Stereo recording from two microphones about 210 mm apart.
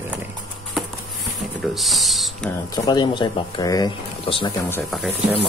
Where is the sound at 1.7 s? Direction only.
Centre (ahead or behind).